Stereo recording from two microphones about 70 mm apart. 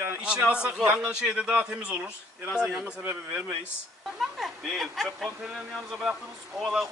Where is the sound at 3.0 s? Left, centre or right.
Right.